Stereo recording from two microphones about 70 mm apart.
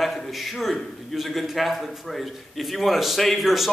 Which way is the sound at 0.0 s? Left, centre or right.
Centre.